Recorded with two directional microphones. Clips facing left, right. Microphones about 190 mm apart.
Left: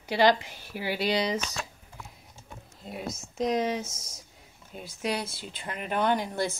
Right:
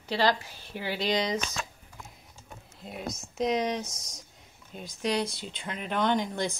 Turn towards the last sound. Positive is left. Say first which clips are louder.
# even
turn(degrees=5)  # may be behind; listen again after turning